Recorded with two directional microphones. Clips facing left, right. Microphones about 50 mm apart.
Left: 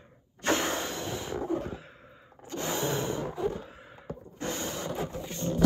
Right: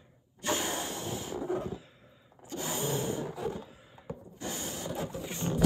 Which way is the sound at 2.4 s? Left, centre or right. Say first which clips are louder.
Left 3 dB; left.